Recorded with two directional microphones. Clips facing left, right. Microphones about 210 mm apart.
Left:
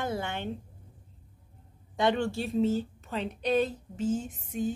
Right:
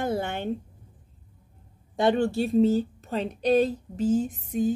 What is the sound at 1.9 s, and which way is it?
Speech, 35° right (ahead or behind).